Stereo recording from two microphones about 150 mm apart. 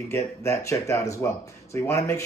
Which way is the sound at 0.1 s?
20° left (ahead or behind).